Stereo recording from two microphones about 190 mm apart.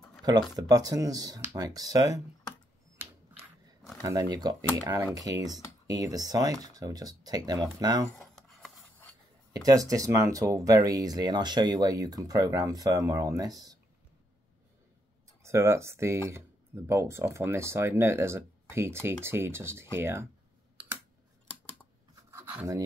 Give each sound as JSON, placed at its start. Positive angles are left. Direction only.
{"t": 0.2, "sound": "speech", "side_deg": -20}
{"t": 4.0, "sound": "speech", "side_deg": -20}
{"t": 8.2, "sound": "rub", "side_deg": 0}
{"t": 9.5, "sound": "speech", "side_deg": -20}
{"t": 15.4, "sound": "speech", "side_deg": -15}
{"t": 22.1, "sound": "filing", "side_deg": -15}